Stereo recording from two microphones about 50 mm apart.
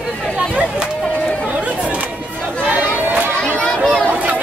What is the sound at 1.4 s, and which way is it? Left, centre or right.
Chatter, right.